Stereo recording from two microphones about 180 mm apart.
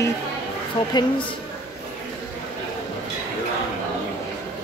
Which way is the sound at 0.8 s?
25° left (ahead or behind).